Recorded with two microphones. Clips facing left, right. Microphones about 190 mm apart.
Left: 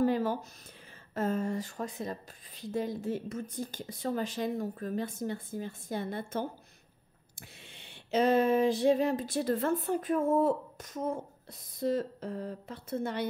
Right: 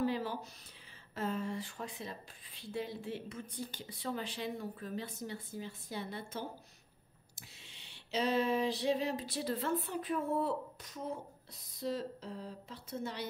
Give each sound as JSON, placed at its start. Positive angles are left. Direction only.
{"t": 0.0, "sound": "a sound", "side_deg": 45}
{"t": 1.1, "sound": "a woman's voice", "side_deg": 45}
{"t": 7.7, "sound": "a woman's voice", "side_deg": 55}